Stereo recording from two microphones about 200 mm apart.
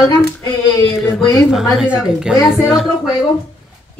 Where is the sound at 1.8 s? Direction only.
5° right (ahead or behind).